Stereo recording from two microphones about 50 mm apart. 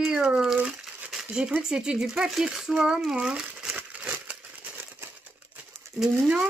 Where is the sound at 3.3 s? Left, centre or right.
Centre.